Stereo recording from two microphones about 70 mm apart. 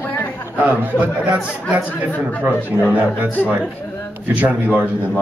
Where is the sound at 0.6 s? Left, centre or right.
Centre.